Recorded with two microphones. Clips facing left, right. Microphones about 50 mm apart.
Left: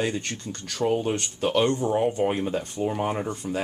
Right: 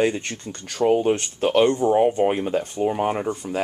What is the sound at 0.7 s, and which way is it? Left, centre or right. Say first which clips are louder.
Speech: right 6 dB; right.